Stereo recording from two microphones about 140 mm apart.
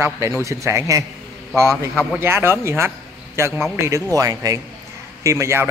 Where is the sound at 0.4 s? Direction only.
20° right (ahead or behind).